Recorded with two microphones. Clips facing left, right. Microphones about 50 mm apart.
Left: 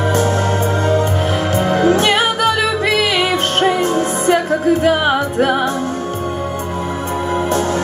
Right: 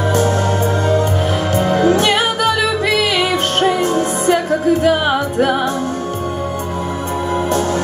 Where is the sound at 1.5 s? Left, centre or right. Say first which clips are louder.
Even; left.